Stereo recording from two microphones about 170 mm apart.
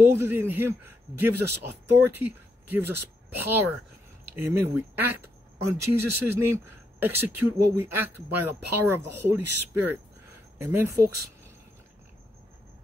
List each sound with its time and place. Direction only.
0.0 s speech: 15° right (ahead or behind)